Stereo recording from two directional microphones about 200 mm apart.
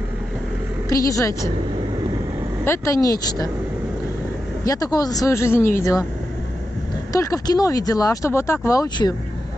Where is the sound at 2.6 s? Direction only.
15° left (ahead or behind).